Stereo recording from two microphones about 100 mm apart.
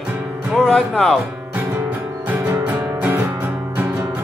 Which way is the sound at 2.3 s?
15° right (ahead or behind).